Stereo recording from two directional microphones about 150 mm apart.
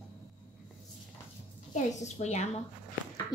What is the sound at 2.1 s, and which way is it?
Speech, 50° left (ahead or behind).